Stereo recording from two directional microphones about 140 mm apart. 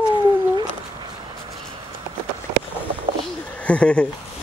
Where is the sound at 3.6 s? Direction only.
10° left (ahead or behind).